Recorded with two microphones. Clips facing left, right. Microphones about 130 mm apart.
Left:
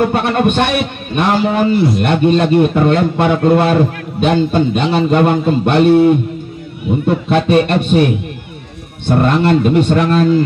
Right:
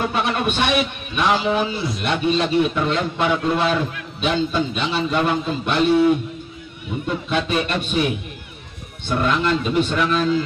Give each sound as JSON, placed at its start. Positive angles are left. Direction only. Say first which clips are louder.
{"t": 0.0, "sound": "a man's voice", "louder": "left 8 dB", "side_deg": 55}